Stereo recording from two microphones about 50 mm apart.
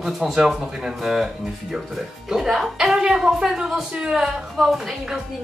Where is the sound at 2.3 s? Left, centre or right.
Centre.